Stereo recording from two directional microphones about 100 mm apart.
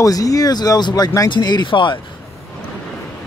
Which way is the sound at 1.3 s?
45° left (ahead or behind).